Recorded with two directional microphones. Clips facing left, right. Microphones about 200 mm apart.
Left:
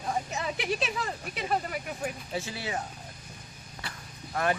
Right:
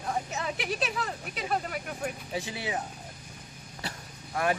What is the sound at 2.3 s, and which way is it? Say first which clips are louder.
Speech: right 2 dB; 15° right (ahead or behind).